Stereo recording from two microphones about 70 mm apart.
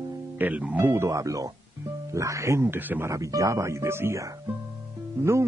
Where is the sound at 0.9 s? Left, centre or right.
Right.